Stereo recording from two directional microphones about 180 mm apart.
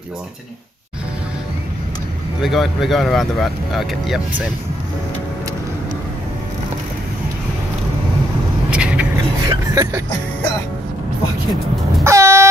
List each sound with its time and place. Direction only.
2.4 s speech: centre (ahead or behind)
8.6 s vehicle: 5° right (ahead or behind)
9.5 s a sound: 15° right (ahead or behind)
12.0 s air horn: 15° right (ahead or behind)